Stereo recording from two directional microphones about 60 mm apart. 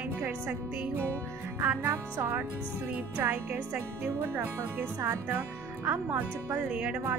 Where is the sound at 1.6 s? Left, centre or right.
Right.